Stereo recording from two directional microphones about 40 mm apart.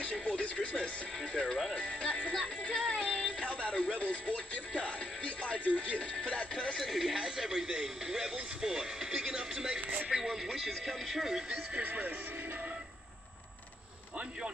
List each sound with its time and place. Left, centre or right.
0.0 s music: left; by 3.2 s centre
3.4 s music: left
6.8 s a sound: centre
7.2 s radio: centre
10.1 s a sound: centre
11.8 s speech: right